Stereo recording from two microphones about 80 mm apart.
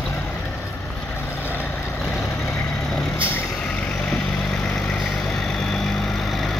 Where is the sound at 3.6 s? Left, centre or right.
Centre.